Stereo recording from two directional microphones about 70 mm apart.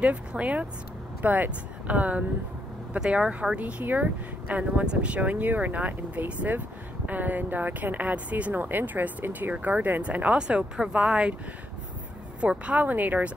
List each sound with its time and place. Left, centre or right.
0.0 s speech: centre
12.4 s speech: centre